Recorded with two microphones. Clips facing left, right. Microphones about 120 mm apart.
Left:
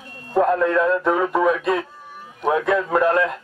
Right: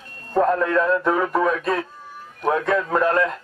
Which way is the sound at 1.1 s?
20° left (ahead or behind).